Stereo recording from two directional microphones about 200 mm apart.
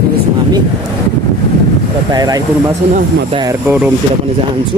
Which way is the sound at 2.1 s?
20° right (ahead or behind).